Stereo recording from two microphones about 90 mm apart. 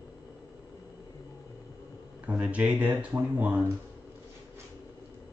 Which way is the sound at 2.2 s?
10° right (ahead or behind).